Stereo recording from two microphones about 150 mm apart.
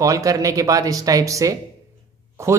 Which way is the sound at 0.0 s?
20° right (ahead or behind).